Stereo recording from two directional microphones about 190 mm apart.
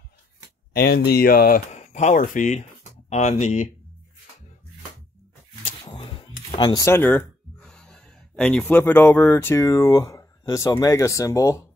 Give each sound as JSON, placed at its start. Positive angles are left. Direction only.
{"t": 0.7, "sound": "speech", "side_deg": 55}
{"t": 5.9, "sound": "speech", "side_deg": 25}